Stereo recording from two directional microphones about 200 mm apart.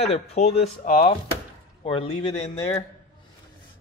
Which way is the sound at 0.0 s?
30° left (ahead or behind).